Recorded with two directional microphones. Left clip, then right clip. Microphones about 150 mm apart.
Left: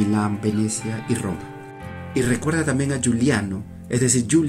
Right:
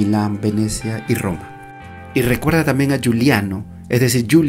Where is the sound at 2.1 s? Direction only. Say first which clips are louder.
Right 5 dB; 35° right (ahead or behind).